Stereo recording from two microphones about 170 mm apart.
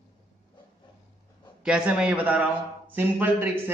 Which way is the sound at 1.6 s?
5° right (ahead or behind).